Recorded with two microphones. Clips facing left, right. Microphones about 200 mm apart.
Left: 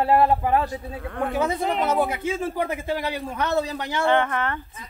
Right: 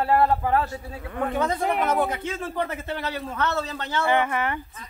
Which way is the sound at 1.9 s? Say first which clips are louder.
Left 2 dB; 10° left (ahead or behind).